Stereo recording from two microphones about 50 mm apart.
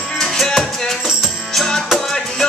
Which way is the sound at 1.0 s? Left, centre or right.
Centre.